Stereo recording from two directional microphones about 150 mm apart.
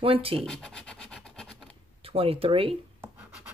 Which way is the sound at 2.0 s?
40° right (ahead or behind).